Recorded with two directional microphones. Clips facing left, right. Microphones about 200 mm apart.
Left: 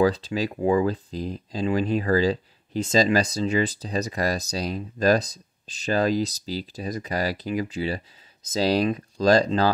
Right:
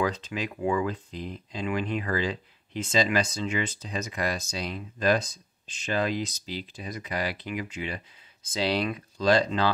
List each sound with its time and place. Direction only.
0.0 s speech: 35° left (ahead or behind)